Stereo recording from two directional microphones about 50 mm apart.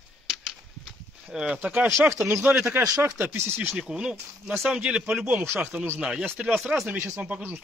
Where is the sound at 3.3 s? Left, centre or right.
Right.